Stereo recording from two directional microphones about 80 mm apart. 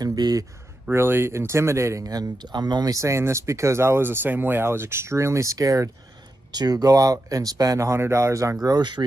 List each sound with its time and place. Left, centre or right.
0.0 s speech: right
0.9 s speech: right
2.0 s speech: right
8.6 s speech: right